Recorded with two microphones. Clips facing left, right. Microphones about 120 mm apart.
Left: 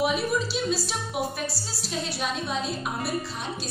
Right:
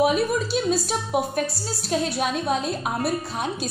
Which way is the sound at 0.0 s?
50° right (ahead or behind).